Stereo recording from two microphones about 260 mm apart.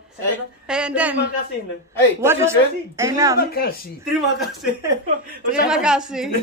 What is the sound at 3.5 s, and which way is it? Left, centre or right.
Speech, left.